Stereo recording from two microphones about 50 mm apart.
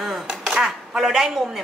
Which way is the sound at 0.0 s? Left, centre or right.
Centre.